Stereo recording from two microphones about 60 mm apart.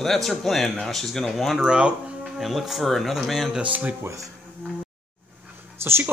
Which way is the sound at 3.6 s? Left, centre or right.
Right.